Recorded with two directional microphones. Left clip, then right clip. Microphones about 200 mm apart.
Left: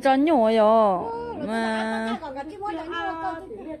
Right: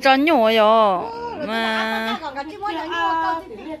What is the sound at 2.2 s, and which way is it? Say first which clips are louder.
Speech: right 5 dB; 50° left (ahead or behind).